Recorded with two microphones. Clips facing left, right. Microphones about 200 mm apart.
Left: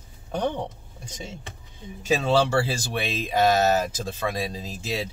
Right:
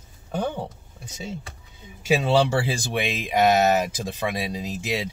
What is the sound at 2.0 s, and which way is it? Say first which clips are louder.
Speech: right 1 dB; 10° right (ahead or behind).